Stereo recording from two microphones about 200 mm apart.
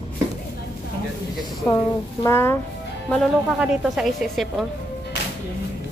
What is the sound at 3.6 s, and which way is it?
A woman's voice, 5° right (ahead or behind).